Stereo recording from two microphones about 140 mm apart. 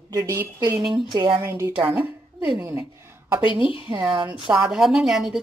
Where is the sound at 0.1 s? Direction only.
25° right (ahead or behind).